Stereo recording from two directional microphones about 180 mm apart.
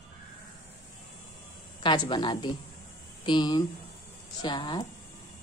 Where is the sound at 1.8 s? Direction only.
25° left (ahead or behind).